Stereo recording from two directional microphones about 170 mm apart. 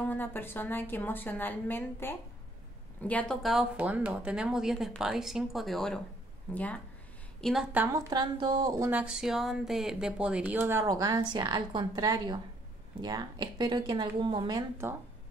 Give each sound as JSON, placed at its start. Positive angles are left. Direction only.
{"t": 0.0, "sound": "a woman's voice", "side_deg": 10}
{"t": 7.7, "sound": "speech", "side_deg": -15}
{"t": 8.1, "sound": "speech", "side_deg": -25}
{"t": 9.0, "sound": "speech", "side_deg": -5}
{"t": 14.8, "sound": "speech", "side_deg": -15}